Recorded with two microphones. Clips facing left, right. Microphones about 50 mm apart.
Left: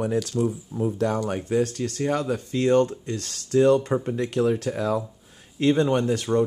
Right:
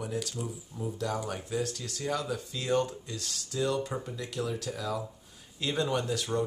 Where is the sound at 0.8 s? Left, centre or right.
Left.